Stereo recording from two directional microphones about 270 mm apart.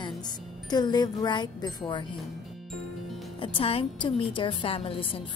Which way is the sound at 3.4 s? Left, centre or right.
Centre.